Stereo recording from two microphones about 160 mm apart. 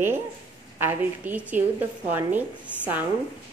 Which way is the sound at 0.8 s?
15° right (ahead or behind).